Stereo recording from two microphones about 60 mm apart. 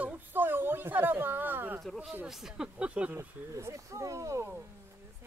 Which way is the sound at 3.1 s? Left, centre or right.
Right.